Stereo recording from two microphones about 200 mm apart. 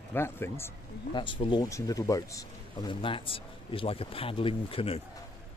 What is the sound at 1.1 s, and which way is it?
Speech, 25° left (ahead or behind).